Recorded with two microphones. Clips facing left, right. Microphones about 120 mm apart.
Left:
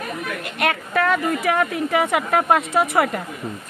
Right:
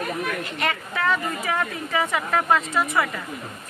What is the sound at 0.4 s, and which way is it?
A woman's voice, 60° left (ahead or behind).